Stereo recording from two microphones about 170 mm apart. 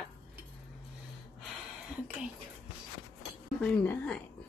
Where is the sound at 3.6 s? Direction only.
5° left (ahead or behind).